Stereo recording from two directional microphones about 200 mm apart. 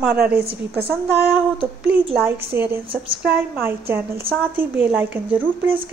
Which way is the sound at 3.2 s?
10° right (ahead or behind).